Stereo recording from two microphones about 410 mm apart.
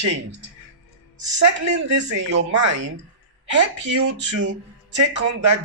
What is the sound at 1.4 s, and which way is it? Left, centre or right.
Speech, right.